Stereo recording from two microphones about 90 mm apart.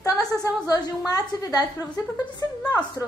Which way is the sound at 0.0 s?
45° left (ahead or behind).